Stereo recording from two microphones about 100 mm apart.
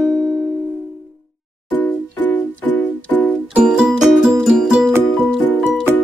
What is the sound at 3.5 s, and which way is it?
Music, 10° right (ahead or behind).